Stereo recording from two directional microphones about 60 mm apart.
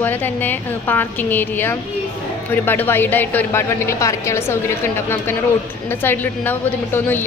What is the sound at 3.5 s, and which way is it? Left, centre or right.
A woman's voice, left.